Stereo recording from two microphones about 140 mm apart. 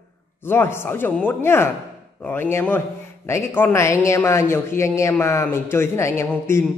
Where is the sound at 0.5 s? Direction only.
15° left (ahead or behind).